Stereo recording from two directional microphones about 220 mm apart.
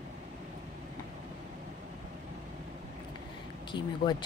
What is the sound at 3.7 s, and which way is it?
Speech, 20° left (ahead or behind).